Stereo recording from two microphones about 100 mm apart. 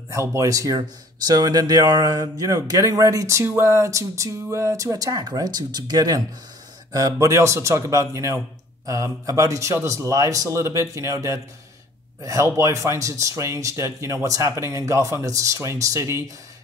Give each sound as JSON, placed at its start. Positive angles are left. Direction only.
{"t": 0.1, "sound": "speech", "side_deg": -30}